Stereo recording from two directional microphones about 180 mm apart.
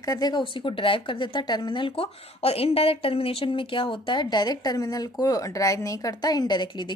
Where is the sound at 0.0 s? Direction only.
20° left (ahead or behind).